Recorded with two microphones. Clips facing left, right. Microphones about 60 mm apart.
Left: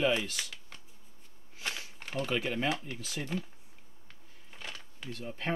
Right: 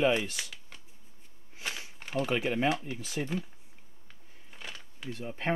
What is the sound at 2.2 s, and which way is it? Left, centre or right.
Speech, centre.